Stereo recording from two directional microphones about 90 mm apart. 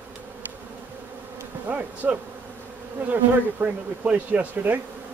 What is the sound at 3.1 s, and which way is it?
Speech, 20° right (ahead or behind).